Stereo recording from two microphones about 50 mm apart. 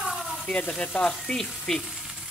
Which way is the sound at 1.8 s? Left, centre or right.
Centre.